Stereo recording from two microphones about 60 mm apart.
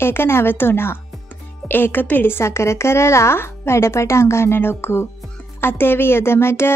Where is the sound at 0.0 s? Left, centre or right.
Left.